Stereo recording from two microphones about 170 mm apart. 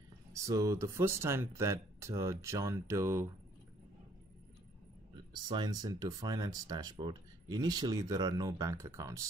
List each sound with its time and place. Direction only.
0.3 s speech: 20° right (ahead or behind)
5.3 s speech: 25° right (ahead or behind)